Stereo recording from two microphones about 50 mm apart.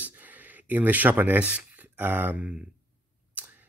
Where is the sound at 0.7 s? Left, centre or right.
Right.